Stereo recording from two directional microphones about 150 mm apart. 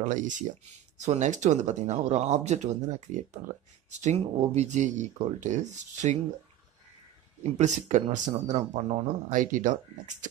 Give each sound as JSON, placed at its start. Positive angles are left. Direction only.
{"t": 0.0, "sound": "speech", "side_deg": -55}
{"t": 7.5, "sound": "speech", "side_deg": -55}